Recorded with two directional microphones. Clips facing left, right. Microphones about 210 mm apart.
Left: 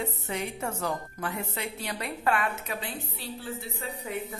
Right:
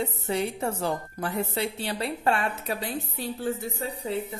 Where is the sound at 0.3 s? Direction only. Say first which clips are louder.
Right 7 dB; 35° right (ahead or behind).